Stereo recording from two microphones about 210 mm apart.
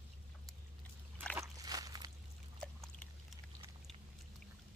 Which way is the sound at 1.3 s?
15° right (ahead or behind).